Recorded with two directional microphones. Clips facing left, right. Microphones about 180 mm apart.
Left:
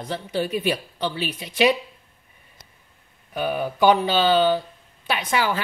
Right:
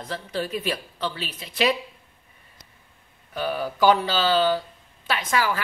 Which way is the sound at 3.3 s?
20° left (ahead or behind).